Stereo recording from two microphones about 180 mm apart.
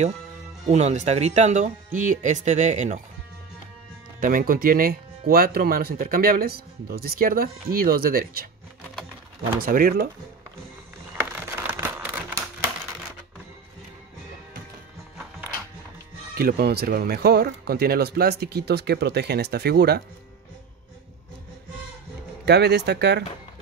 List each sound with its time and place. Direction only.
0.7 s speech: 40° right (ahead or behind)
4.2 s speech: 50° right (ahead or behind)
9.6 s speech: 55° right (ahead or behind)
11.1 s a sound: 10° right (ahead or behind)
16.3 s speech: 55° right (ahead or behind)
22.4 s speech: 65° right (ahead or behind)